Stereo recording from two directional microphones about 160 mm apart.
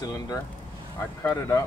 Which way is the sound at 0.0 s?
20° left (ahead or behind).